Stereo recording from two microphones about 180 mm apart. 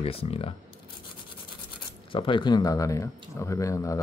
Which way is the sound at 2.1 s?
25° left (ahead or behind).